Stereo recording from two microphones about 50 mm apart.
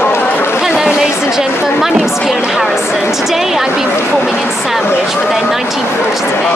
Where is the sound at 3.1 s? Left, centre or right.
Centre.